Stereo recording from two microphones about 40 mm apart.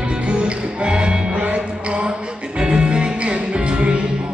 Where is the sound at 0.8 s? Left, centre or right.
Right.